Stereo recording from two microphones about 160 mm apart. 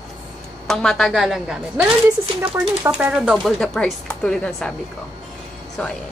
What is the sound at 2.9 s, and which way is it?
Speech, 5° right (ahead or behind).